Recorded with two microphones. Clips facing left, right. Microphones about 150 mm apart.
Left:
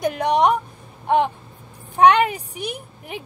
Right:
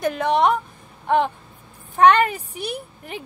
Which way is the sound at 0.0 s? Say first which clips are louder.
Left 1 dB; 15° left (ahead or behind).